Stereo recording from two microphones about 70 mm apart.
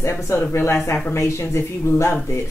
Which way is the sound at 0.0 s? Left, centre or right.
Left.